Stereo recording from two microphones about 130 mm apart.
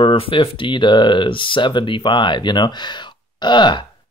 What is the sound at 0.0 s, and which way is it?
Speech, 45° left (ahead or behind).